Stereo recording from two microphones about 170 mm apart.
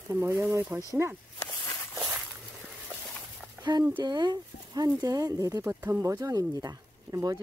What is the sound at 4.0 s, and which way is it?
Speech, 25° right (ahead or behind).